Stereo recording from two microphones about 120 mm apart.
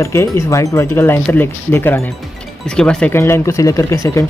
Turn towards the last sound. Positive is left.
turn(degrees=25)  # may be behind; listen again after turning